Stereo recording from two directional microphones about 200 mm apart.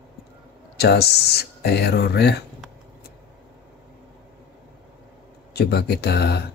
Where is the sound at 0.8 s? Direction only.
55° left (ahead or behind).